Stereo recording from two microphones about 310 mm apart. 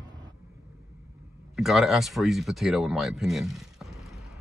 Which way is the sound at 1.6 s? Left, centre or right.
Centre.